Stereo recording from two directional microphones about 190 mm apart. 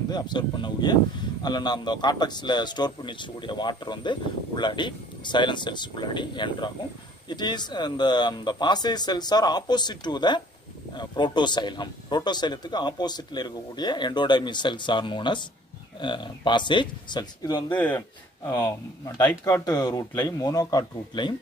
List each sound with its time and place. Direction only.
0.1 s a man's voice: 25° left (ahead or behind)
17.6 s speech: 10° left (ahead or behind)